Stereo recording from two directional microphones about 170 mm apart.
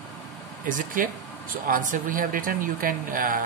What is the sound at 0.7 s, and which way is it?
Speech, 50° right (ahead or behind).